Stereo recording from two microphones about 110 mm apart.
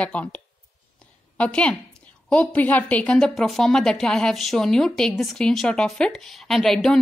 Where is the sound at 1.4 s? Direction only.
10° left (ahead or behind).